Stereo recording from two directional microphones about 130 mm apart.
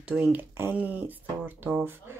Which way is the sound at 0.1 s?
10° right (ahead or behind).